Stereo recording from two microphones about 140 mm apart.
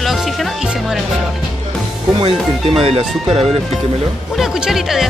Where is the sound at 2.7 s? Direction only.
45° right (ahead or behind).